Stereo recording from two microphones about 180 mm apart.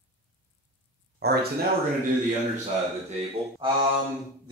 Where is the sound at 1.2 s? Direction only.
60° right (ahead or behind).